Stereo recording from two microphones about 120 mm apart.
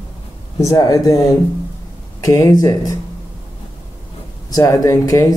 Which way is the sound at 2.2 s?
25° left (ahead or behind).